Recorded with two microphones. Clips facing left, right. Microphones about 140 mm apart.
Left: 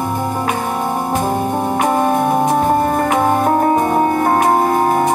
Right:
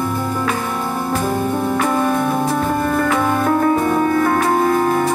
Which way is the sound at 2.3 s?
20° left (ahead or behind).